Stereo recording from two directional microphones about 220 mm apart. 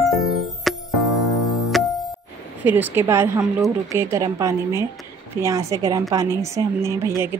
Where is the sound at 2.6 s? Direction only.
10° right (ahead or behind).